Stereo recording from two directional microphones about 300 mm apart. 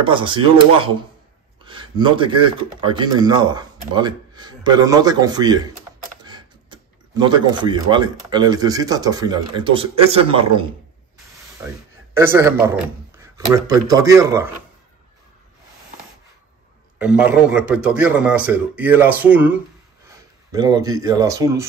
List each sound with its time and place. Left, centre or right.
0.0 s a man's voice: centre
17.0 s a man's voice: centre